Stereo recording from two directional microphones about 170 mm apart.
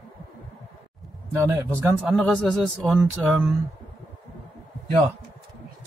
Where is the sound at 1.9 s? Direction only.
Centre (ahead or behind).